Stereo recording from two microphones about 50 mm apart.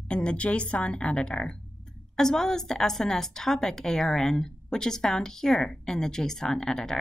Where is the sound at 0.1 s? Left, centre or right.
Left.